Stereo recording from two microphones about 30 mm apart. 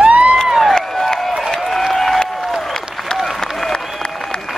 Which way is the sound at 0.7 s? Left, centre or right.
Centre.